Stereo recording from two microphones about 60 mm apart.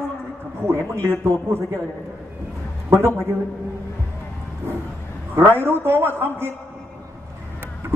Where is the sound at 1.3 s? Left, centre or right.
Right.